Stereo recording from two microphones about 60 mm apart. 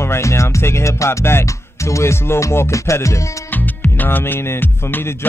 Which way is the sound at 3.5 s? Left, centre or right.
Left.